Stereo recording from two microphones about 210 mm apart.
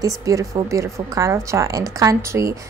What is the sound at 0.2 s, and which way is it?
A woman's voice, 15° right (ahead or behind).